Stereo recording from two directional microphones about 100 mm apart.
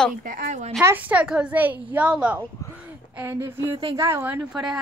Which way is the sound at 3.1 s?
25° right (ahead or behind).